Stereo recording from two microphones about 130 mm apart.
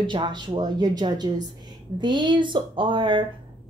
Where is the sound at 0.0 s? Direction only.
35° right (ahead or behind).